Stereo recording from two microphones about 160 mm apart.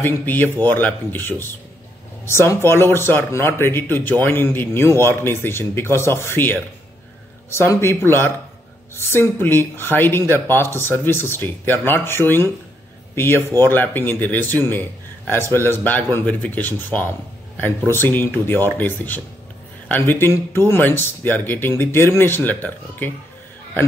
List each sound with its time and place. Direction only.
0.0 s speech: 10° left (ahead or behind)